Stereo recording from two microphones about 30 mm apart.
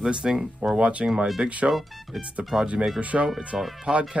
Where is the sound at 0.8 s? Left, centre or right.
Right.